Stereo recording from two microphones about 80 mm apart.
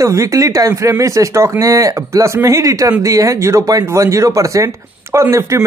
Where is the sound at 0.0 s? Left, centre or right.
Right.